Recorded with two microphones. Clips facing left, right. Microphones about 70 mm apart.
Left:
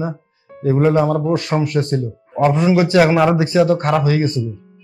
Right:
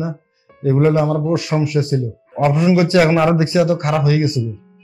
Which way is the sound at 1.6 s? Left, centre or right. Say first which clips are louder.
Even; left.